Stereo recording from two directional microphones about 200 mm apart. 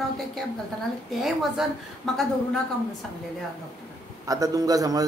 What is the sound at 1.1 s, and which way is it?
A woman's voice, centre (ahead or behind).